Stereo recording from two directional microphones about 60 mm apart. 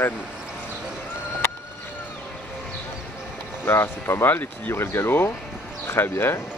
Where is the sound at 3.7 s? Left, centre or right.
Left.